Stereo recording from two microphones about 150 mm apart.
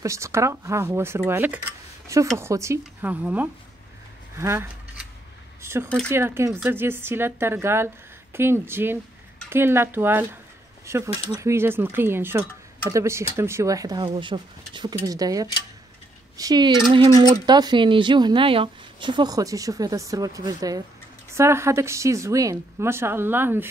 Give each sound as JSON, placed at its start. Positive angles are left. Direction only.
{"t": 0.0, "sound": "speech", "side_deg": -20}